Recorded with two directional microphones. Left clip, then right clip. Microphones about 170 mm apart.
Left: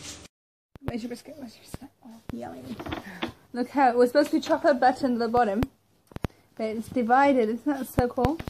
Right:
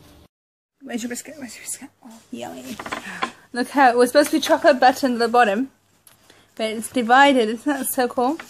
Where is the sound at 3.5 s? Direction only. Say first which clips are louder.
Right 6 dB; 25° right (ahead or behind).